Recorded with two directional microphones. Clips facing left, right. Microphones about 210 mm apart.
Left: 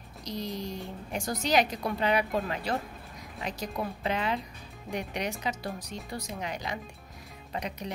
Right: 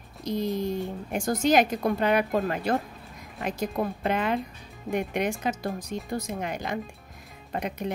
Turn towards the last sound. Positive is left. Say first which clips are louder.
# right 5 dB
turn(degrees=-55)  # may be behind; listen again after turning